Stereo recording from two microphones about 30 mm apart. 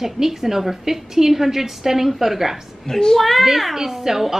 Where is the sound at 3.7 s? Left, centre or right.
Centre.